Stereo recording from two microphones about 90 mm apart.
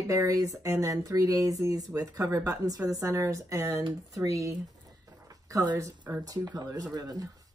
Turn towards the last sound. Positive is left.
turn(degrees=-45)  # may be behind; listen again after turning